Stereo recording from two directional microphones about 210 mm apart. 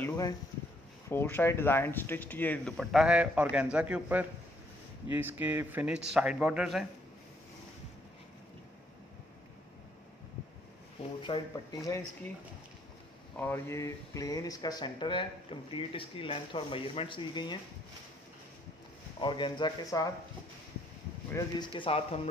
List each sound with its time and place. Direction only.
0.0 s a sound: 15° left (ahead or behind)
1.0 s a man's voice: 10° left (ahead or behind)
11.2 s speech: 20° left (ahead or behind)
13.4 s speech: 10° left (ahead or behind)
19.1 s speech: 20° left (ahead or behind)
21.3 s speech: 15° left (ahead or behind)